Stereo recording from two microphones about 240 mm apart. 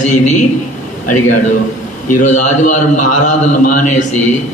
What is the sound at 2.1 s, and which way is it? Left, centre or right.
A man's voice, left.